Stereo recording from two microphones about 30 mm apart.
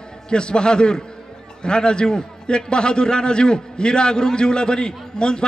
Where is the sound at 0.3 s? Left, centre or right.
Left.